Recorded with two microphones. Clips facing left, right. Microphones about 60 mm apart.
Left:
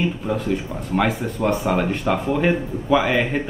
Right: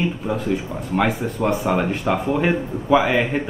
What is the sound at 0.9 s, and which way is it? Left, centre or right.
A man's voice, centre.